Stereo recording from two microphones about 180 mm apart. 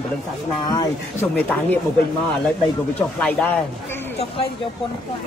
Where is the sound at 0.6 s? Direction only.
20° left (ahead or behind).